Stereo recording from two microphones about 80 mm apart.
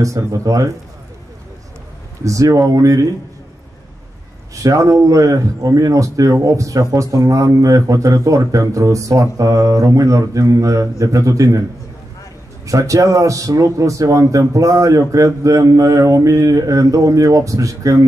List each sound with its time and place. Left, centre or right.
0.0 s speech: right
2.2 s speech: right
4.6 s speech: right
12.6 s speech: right